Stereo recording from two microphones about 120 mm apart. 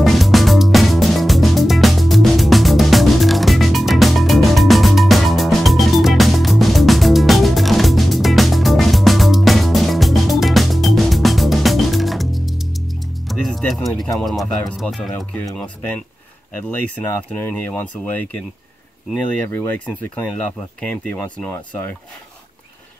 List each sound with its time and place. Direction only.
0.0 s music: centre (ahead or behind)
15.5 s speech: 10° left (ahead or behind)
17.0 s speech: 15° left (ahead or behind)
19.9 s speech: 10° left (ahead or behind)